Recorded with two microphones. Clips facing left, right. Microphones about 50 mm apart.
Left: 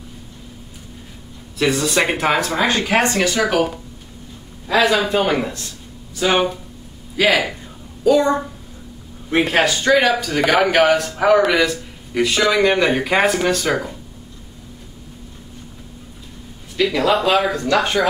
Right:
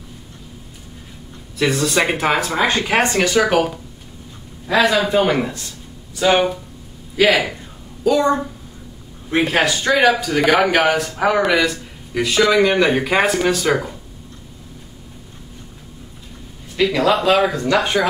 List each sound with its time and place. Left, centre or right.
1.6 s speech: centre
3.0 s speech: right
4.6 s speech: centre
9.4 s speech: centre
16.7 s speech: centre
17.0 s speech: centre
17.6 s speech: centre